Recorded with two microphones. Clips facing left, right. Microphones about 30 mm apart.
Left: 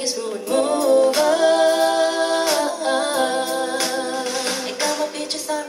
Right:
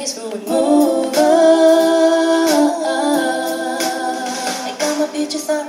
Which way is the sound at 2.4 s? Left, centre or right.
Centre.